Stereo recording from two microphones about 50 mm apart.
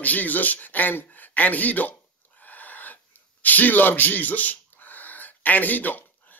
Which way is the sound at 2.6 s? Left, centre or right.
Left.